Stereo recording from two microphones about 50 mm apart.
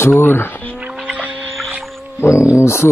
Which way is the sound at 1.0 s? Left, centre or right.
Right.